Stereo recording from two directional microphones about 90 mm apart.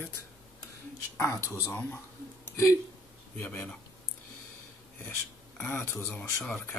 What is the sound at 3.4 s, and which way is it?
Speech, 30° left (ahead or behind).